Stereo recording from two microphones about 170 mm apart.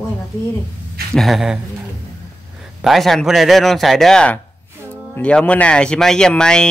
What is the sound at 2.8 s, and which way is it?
Speech, centre (ahead or behind).